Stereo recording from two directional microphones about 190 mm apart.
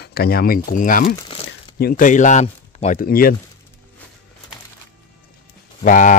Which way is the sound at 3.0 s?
50° left (ahead or behind).